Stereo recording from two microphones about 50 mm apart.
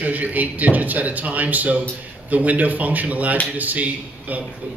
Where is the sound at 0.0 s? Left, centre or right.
Right.